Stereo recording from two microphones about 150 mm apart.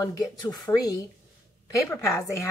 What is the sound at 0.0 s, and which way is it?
Speech, 25° left (ahead or behind).